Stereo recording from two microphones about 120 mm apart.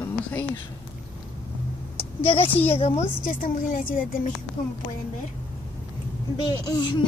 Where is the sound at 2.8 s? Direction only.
75° left (ahead or behind).